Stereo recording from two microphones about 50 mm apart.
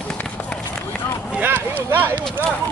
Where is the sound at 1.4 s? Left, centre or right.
Right.